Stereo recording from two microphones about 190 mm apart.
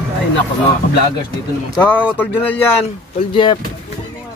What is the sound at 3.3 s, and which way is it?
Speech, 25° left (ahead or behind).